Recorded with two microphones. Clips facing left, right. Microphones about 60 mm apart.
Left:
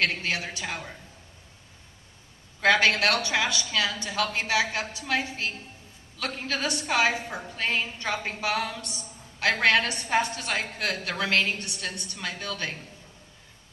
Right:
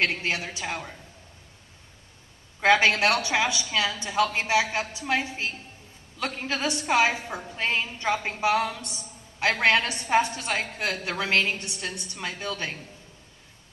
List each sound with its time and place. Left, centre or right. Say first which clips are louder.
0.0 s a woman's voice: right 1 dB; right
2.6 s a woman's voice: right 1 dB; right